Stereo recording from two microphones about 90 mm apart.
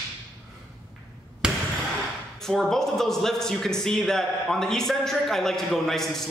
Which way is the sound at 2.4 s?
5° left (ahead or behind).